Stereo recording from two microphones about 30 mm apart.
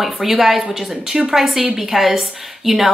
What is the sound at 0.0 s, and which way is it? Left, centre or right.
A woman's voice, centre.